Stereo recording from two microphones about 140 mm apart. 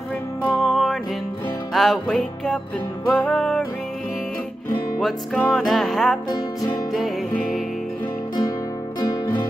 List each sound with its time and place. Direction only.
0.5 s music: centre (ahead or behind)
5.0 s music: 5° left (ahead or behind)
9.0 s music: 25° left (ahead or behind)